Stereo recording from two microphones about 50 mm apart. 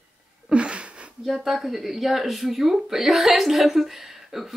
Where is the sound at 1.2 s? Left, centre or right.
Centre.